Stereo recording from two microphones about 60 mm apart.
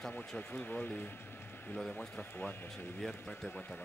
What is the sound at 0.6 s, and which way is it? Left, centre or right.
Speech, left.